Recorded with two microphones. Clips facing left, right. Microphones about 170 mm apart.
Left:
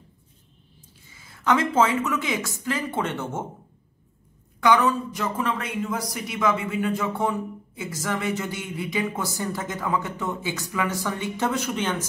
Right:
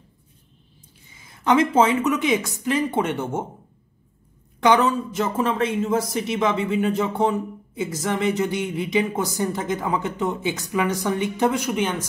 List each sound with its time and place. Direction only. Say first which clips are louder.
1.0 s speech: right 2 dB; 20° right (ahead or behind)
4.6 s speech: right 2 dB; 20° right (ahead or behind)